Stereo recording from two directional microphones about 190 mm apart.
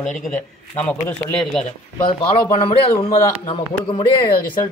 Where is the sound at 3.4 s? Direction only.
25° left (ahead or behind).